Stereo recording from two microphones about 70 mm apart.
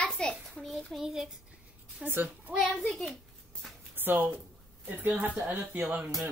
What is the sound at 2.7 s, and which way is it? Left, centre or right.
Speech, centre.